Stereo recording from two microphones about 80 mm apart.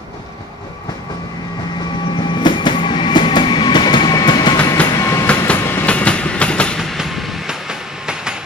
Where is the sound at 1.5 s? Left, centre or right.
Left.